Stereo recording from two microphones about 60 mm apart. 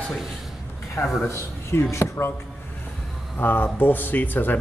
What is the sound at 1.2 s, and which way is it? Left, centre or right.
Speech, left.